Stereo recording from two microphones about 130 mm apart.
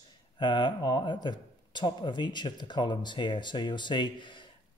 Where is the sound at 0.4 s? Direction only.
35° left (ahead or behind).